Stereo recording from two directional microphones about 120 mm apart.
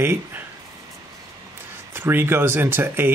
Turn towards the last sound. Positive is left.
turn(degrees=-20)  # may be behind; listen again after turning